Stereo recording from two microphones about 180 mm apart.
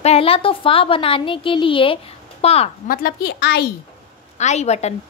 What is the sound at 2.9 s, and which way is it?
Speech, 55° left (ahead or behind).